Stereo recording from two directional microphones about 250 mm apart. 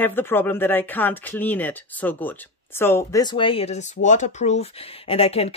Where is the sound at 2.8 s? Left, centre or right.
Centre.